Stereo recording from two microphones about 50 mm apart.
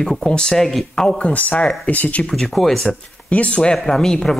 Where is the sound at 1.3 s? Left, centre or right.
Left.